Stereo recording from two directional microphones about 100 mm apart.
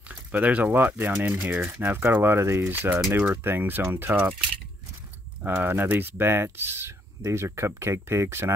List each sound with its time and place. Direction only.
0.1 s speech: 15° right (ahead or behind)
5.5 s speech: 20° right (ahead or behind)